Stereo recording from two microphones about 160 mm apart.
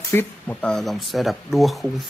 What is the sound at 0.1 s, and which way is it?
Speech, 10° left (ahead or behind).